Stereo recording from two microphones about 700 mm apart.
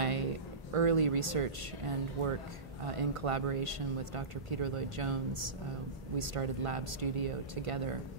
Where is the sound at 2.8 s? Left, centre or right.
Right.